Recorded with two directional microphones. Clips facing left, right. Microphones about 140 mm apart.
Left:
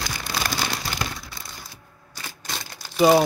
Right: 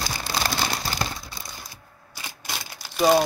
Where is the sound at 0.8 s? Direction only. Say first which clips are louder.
Right 1 dB; 30° right (ahead or behind).